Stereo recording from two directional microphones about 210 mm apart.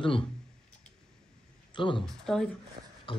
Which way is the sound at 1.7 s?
25° left (ahead or behind).